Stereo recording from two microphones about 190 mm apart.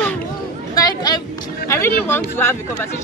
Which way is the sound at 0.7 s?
20° left (ahead or behind).